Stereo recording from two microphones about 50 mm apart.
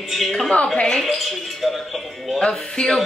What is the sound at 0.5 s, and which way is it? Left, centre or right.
Speech, left.